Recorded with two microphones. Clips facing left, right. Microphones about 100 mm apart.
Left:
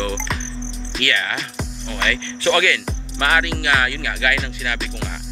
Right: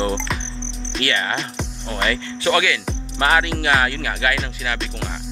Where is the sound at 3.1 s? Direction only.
25° right (ahead or behind).